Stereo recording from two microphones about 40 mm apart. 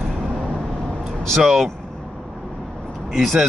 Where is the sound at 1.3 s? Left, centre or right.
Centre.